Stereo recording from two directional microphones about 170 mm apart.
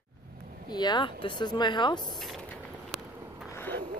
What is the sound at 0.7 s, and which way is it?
Speech, 25° left (ahead or behind).